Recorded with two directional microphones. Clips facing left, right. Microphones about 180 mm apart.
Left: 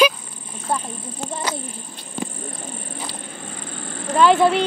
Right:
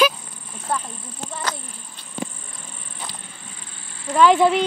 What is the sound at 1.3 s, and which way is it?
Speech, 15° left (ahead or behind).